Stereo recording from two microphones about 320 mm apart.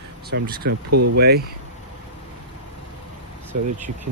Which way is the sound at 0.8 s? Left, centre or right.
Right.